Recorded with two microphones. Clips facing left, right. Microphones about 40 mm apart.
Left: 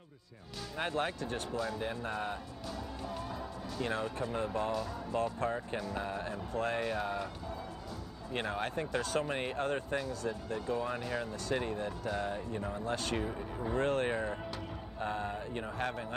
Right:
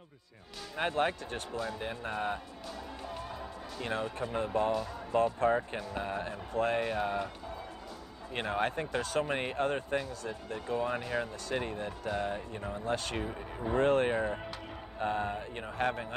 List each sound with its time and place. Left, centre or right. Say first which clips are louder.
0.7 s speech: right 4 dB; right
8.3 s speech: right 4 dB; right